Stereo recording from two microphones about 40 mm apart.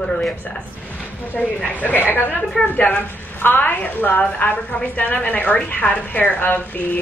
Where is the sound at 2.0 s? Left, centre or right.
Left.